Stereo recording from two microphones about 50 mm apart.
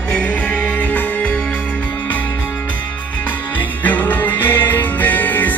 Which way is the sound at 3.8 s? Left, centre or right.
Left.